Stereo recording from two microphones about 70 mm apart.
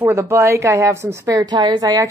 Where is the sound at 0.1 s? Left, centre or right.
Right.